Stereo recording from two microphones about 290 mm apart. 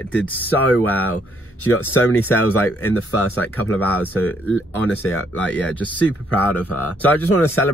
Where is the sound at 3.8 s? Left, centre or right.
Centre.